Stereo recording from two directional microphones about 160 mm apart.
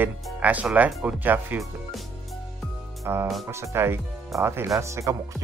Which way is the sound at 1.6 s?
Centre (ahead or behind).